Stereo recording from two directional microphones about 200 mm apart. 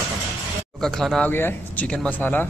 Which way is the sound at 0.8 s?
Centre (ahead or behind).